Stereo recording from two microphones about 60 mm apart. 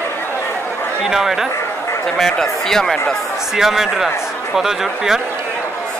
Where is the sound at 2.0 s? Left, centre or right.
Centre.